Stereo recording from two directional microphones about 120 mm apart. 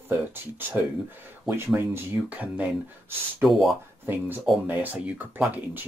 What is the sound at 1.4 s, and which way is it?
Speech, 20° right (ahead or behind).